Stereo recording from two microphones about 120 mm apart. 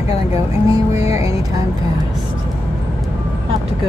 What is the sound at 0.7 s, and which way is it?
Music, 30° right (ahead or behind).